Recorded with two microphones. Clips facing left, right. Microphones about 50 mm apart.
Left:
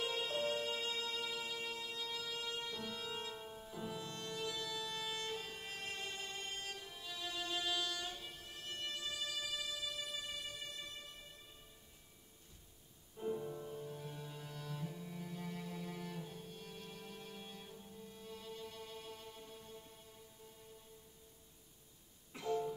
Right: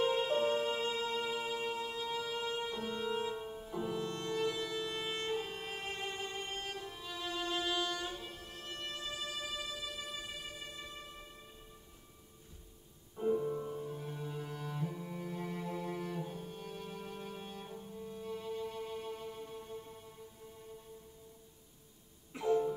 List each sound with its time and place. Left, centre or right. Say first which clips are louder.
0.0 s music: right 8 dB; centre
5.4 s music: right 6 dB; centre
13.2 s cello: right 8 dB; right
22.3 s music: right 7 dB; right